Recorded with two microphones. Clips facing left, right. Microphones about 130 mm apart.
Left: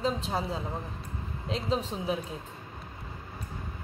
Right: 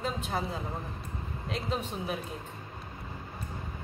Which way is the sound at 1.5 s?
30° left (ahead or behind).